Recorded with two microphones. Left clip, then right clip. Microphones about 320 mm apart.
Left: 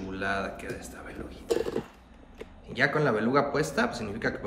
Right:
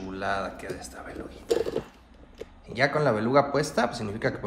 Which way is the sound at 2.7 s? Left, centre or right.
Centre.